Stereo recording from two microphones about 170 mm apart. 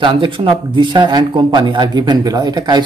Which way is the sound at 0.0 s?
30° right (ahead or behind).